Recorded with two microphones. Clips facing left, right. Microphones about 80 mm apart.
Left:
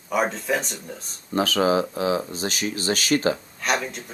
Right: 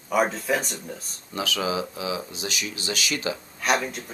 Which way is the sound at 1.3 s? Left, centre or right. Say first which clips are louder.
Left 7 dB; left.